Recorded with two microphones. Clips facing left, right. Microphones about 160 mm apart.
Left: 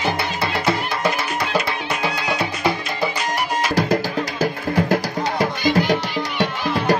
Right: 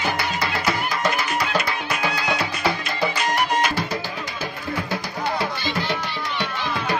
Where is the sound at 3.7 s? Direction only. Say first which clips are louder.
Left 8 dB; 50° left (ahead or behind).